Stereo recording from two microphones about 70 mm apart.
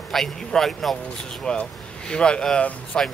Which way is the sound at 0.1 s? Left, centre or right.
Centre.